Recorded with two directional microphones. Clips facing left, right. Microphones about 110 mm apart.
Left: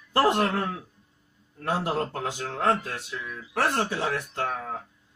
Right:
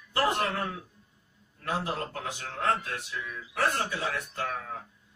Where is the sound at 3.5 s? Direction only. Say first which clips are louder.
Left 3 dB; 90° left.